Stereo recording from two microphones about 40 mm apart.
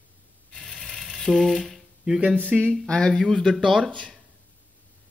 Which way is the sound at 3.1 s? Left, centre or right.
Centre.